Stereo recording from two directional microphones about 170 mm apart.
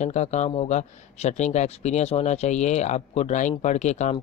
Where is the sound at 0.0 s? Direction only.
40° left (ahead or behind).